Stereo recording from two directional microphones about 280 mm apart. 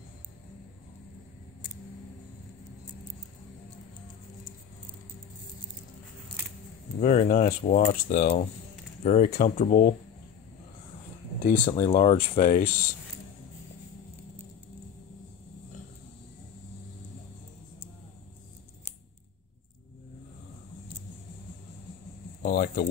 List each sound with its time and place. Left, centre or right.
7.0 s speech: left
11.6 s speech: left
22.4 s speech: left